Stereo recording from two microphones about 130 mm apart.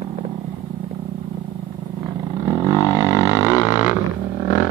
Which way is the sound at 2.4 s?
30° left (ahead or behind).